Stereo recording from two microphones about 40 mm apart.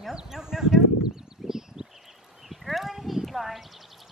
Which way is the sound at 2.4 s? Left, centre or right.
Centre.